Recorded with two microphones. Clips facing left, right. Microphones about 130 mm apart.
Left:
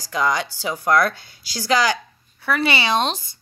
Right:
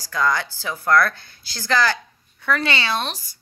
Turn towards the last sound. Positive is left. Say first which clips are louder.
# left 5 dB
turn(degrees=25)  # may be behind; listen again after turning